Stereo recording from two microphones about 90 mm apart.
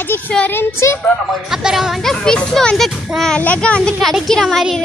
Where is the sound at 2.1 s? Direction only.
10° left (ahead or behind).